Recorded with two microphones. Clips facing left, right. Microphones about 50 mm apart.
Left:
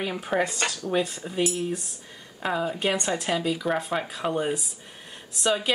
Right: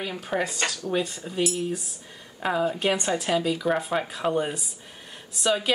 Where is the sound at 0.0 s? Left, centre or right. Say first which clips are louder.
Left 2 dB; centre.